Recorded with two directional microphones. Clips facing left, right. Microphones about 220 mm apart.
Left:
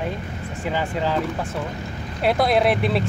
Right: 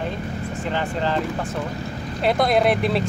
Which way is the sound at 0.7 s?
10° left (ahead or behind).